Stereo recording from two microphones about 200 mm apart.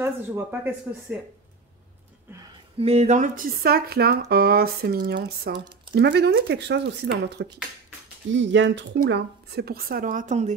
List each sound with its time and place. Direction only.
0.0 s speech: 10° right (ahead or behind)
2.8 s speech: 30° right (ahead or behind); by 9.0 s 65° right (ahead or behind)
9.0 s speech: 55° right (ahead or behind); by 10.5 s 40° right (ahead or behind)